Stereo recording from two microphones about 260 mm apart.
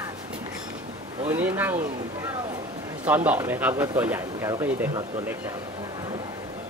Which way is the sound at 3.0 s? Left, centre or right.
Centre.